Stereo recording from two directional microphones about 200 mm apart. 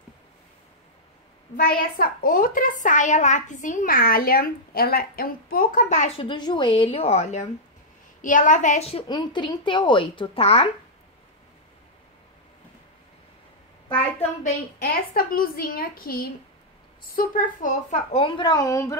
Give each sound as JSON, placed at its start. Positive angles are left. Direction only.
{"t": 1.6, "sound": "a child's voice", "side_deg": 50}
{"t": 15.1, "sound": "a woman's voice", "side_deg": 45}